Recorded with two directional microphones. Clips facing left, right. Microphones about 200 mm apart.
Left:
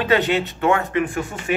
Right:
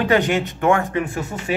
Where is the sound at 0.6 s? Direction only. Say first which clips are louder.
Right 1 dB; 30° right (ahead or behind).